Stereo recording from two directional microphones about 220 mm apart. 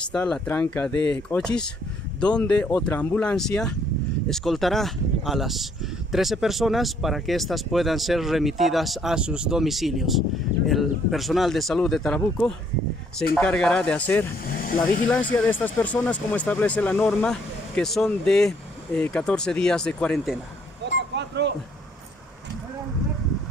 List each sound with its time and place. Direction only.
0.1 s speech: 5° left (ahead or behind)
14.4 s speech: 40° left (ahead or behind)
15.3 s speech: 10° left (ahead or behind)
20.8 s vehicle: 50° right (ahead or behind)